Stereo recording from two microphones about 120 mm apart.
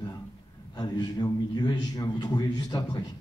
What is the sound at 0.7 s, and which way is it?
A man's voice, 35° left (ahead or behind).